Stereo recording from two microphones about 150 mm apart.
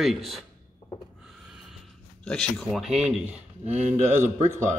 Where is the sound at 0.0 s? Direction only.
Centre (ahead or behind).